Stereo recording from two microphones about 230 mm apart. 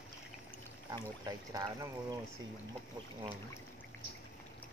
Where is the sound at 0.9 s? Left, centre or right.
Centre.